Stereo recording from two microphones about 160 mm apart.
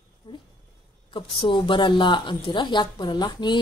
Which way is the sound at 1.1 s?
30° left (ahead or behind).